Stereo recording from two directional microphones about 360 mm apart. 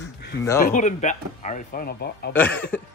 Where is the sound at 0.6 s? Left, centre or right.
Left.